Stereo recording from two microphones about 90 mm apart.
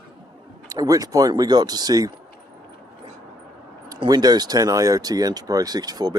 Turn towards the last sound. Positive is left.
turn(degrees=-45)  # may be behind; listen again after turning